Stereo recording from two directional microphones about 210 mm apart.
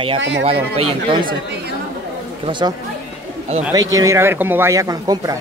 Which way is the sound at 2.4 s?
20° right (ahead or behind).